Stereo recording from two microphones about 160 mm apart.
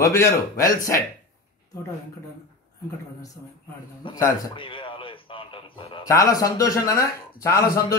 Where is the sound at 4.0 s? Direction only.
30° left (ahead or behind).